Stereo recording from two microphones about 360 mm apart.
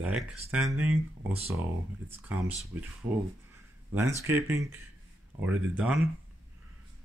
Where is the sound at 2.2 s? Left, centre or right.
Centre.